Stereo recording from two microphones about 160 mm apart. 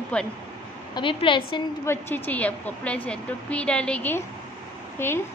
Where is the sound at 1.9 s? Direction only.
15° left (ahead or behind).